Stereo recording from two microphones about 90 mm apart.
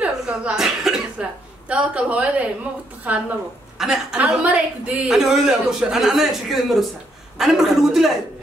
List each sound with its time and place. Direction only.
0.0 s cough: 10° right (ahead or behind)
1.2 s a man's voice: 10° right (ahead or behind)
3.7 s a woman's voice: 5° right (ahead or behind)
4.2 s a man's voice: 15° right (ahead or behind)